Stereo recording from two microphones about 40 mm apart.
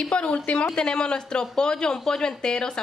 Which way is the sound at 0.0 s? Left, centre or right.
Left.